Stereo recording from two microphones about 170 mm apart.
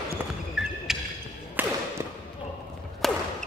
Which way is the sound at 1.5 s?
10° right (ahead or behind).